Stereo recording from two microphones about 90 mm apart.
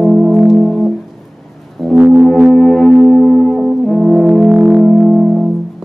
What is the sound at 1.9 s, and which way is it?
Music, 15° right (ahead or behind).